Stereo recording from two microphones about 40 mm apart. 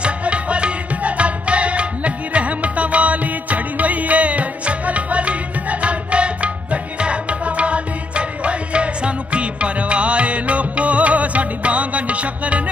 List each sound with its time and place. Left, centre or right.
0.0 s music: right